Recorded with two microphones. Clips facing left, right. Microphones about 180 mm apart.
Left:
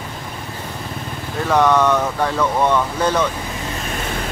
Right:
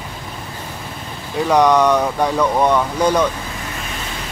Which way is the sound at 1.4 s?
15° right (ahead or behind).